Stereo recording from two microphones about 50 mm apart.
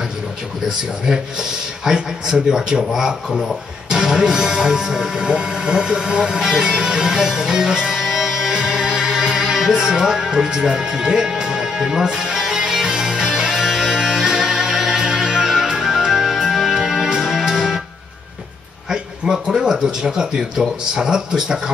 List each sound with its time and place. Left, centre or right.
1.9 s speech: centre
3.9 s music: centre
18.9 s speech: centre